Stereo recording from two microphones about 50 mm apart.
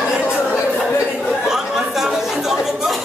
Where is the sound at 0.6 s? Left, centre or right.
Centre.